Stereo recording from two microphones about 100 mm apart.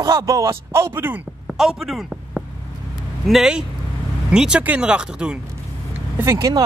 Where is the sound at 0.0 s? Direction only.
35° right (ahead or behind); by 1.2 s 20° right (ahead or behind).